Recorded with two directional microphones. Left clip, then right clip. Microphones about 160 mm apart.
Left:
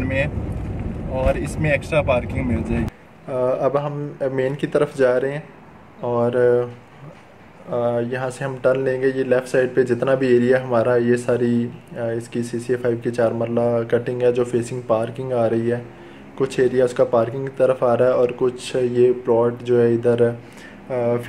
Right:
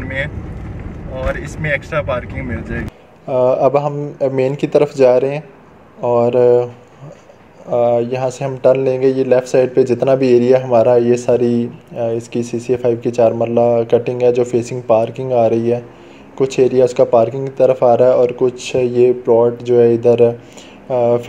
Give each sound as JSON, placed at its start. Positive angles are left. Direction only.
{"t": 1.6, "sound": "speech", "side_deg": 15}
{"t": 3.3, "sound": "speech", "side_deg": -25}
{"t": 7.7, "sound": "speech", "side_deg": -25}